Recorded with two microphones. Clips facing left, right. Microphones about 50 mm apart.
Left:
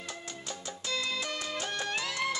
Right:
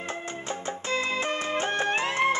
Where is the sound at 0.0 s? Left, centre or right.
Right.